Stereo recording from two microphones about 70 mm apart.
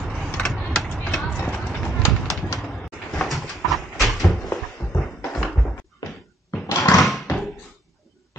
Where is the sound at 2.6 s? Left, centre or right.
Centre.